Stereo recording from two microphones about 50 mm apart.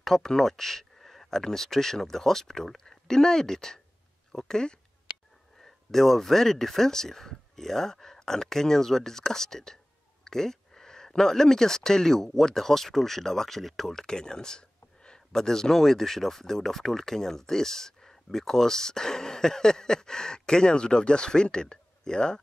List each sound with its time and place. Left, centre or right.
0.0 s speech: centre
14.0 s speech: centre